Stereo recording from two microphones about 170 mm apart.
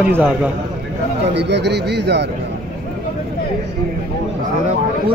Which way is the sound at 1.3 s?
85° right.